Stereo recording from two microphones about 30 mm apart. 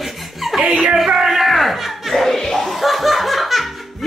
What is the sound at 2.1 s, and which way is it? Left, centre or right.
Music, centre.